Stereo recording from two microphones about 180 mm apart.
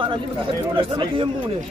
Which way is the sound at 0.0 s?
25° right (ahead or behind).